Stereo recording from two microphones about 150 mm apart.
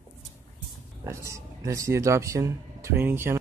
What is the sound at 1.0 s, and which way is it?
Speech, 20° right (ahead or behind).